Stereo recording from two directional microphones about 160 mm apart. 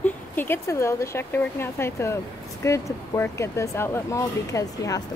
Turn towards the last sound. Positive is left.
turn(degrees=20)  # may be behind; listen again after turning